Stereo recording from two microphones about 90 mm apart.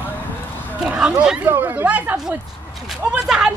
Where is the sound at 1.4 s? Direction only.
25° right (ahead or behind).